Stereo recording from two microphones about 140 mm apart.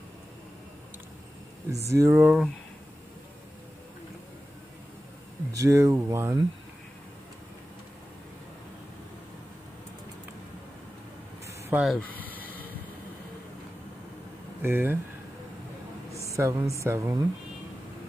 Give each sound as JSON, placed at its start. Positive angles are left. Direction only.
{"t": 1.7, "sound": "speech", "side_deg": -20}
{"t": 5.5, "sound": "speech", "side_deg": -25}
{"t": 11.7, "sound": "speech", "side_deg": 0}
{"t": 12.2, "sound": "vehicle", "side_deg": -10}
{"t": 14.6, "sound": "speech", "side_deg": -15}
{"t": 16.1, "sound": "a sound", "side_deg": -20}
{"t": 16.7, "sound": "speech", "side_deg": -20}